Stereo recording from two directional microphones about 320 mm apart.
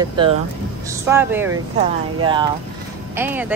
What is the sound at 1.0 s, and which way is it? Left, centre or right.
Speech, centre.